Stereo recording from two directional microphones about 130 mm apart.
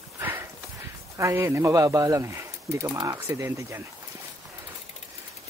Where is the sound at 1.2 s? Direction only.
20° right (ahead or behind).